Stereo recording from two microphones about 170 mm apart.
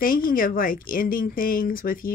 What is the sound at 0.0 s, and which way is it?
A woman's voice, 55° left (ahead or behind).